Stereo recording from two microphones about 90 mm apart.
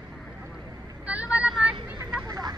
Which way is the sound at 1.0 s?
15° right (ahead or behind).